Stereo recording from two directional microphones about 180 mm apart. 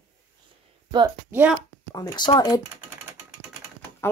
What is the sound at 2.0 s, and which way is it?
Speech, 20° left (ahead or behind).